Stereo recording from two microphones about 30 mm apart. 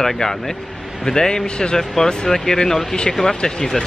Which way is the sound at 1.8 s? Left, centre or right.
Centre.